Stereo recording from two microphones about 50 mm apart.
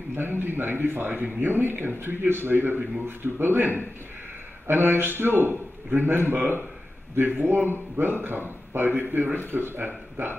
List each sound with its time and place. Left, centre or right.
0.1 s a man's voice: right